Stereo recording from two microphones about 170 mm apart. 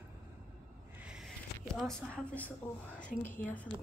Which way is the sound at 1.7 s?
5° left (ahead or behind).